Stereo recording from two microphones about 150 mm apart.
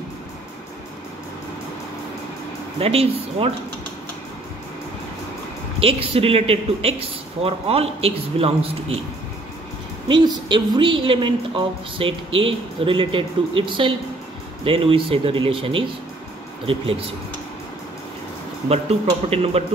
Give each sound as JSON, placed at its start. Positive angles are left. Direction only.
{"t": 2.8, "sound": "a woman's voice", "side_deg": -40}
{"t": 5.8, "sound": "a woman's voice", "side_deg": -40}
{"t": 10.0, "sound": "a woman's voice", "side_deg": -30}
{"t": 18.7, "sound": "a man's voice", "side_deg": -45}